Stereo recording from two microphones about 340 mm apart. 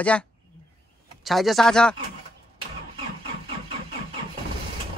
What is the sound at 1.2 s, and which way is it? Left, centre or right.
Speech, centre.